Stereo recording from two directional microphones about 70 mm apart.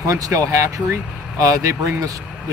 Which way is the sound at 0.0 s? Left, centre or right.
Right.